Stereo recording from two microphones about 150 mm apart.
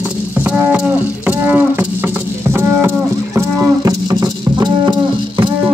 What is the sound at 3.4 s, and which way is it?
Moo, 20° right (ahead or behind).